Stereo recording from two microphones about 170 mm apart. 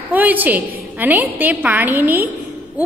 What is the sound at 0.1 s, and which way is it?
A woman's voice, 10° right (ahead or behind).